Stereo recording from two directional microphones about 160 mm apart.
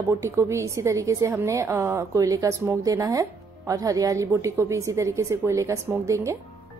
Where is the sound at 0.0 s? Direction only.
15° right (ahead or behind).